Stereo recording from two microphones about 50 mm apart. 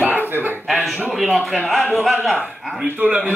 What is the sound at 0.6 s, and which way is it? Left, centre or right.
Speech, centre.